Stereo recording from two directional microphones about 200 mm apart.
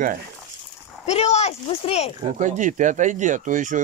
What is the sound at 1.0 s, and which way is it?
Speech, 30° left (ahead or behind).